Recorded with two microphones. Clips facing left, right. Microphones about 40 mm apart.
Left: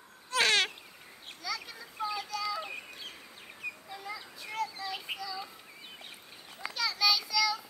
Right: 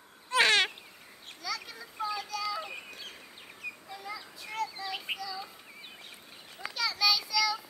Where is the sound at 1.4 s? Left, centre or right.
Centre.